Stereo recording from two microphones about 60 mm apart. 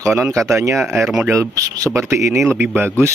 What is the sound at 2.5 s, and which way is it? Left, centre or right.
Speech, right.